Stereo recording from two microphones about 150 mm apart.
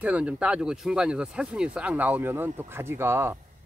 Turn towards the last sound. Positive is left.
turn(degrees=-15)  # may be behind; listen again after turning